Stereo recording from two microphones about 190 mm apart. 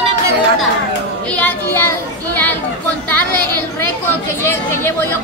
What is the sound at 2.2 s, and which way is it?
Chatter, 10° left (ahead or behind).